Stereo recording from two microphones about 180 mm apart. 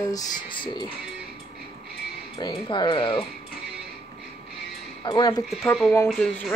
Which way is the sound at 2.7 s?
25° left (ahead or behind).